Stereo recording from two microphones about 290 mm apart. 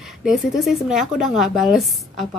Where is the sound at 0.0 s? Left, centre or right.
Centre.